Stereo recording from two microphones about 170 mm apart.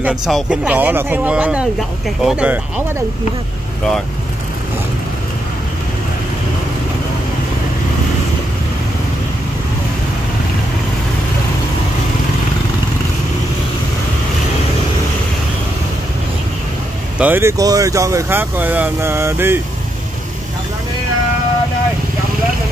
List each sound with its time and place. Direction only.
0.3 s speech: 5° right (ahead or behind)
17.2 s speech: 15° right (ahead or behind)